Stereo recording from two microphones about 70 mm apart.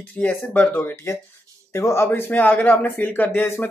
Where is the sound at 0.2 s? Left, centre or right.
Left.